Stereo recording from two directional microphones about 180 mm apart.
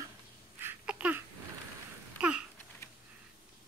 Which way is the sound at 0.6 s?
10° right (ahead or behind).